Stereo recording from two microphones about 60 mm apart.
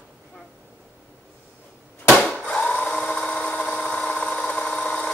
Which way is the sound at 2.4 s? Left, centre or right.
Centre.